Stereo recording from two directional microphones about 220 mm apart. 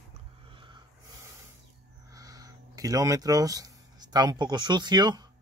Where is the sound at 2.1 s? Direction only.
15° right (ahead or behind).